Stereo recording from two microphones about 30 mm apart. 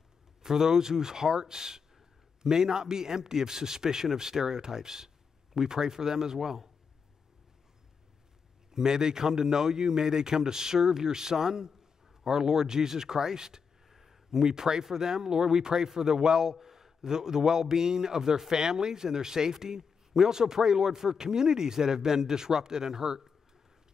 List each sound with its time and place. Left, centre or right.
0.4 s speech: centre
8.7 s speech: right
13.8 s a man's voice: centre